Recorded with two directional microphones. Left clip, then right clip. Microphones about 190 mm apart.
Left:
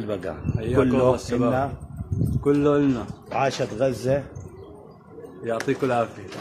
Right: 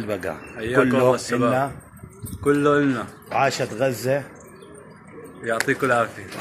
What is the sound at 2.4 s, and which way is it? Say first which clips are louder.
Speech: right 2 dB; 20° left (ahead or behind).